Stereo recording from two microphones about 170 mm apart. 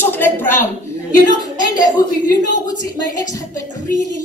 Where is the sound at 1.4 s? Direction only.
20° left (ahead or behind).